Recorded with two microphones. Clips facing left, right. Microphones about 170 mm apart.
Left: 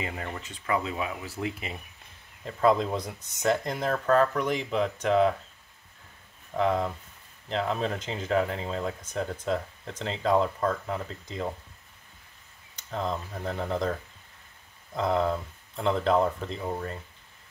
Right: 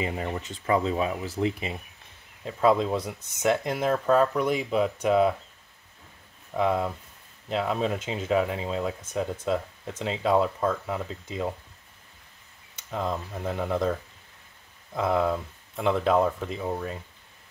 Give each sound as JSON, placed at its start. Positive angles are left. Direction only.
{"t": 0.0, "sound": "speech", "side_deg": -20}
{"t": 2.4, "sound": "speech", "side_deg": -10}
{"t": 6.5, "sound": "speech", "side_deg": -10}
{"t": 12.9, "sound": "speech", "side_deg": -10}
{"t": 15.0, "sound": "speech", "side_deg": -5}